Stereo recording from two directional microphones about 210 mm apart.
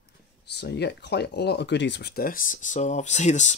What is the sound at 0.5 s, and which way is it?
Speech, 55° left (ahead or behind).